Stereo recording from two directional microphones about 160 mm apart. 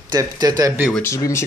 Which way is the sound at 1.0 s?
20° left (ahead or behind).